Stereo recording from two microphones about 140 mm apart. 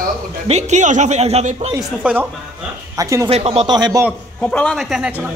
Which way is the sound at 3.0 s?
20° right (ahead or behind).